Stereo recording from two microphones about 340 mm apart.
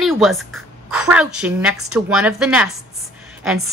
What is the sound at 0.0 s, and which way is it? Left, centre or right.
Speech, centre.